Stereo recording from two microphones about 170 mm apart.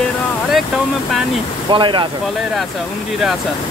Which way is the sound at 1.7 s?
30° right (ahead or behind).